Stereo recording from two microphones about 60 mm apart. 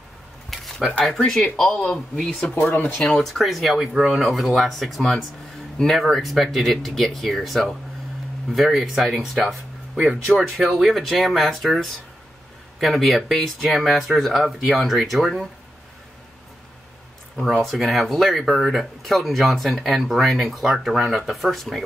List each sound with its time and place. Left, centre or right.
0.5 s a sound: centre
1.2 s speech: centre
2.4 s speech: centre
3.0 s speech: centre
17.4 s speech: centre